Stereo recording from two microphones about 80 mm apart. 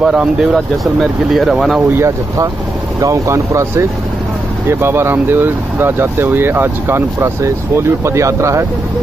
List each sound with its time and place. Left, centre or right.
0.0 s speech: centre
1.9 s speech: right